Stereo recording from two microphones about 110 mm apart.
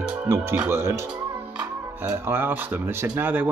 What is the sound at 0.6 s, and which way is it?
Speech, 25° right (ahead or behind).